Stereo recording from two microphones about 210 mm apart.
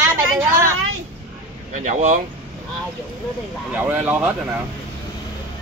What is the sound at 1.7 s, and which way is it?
Speech, 35° right (ahead or behind).